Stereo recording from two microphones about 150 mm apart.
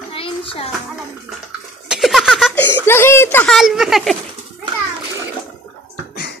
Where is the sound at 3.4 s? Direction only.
Centre (ahead or behind).